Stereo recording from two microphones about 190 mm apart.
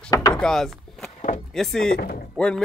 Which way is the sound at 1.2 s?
40° left (ahead or behind).